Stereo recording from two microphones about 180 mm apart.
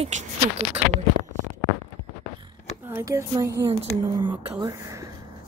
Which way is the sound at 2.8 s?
15° right (ahead or behind).